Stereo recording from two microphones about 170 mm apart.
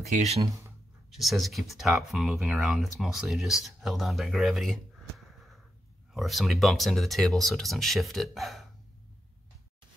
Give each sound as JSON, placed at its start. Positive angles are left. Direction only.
{"t": 0.1, "sound": "speech", "side_deg": -40}
{"t": 1.1, "sound": "speech", "side_deg": 0}
{"t": 6.1, "sound": "speech", "side_deg": 0}